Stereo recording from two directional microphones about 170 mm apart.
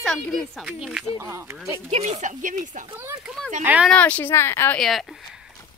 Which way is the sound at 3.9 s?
10° left (ahead or behind).